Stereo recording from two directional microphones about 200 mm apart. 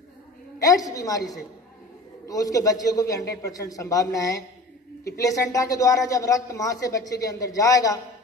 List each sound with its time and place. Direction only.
0.6 s a man's voice: 15° left (ahead or behind)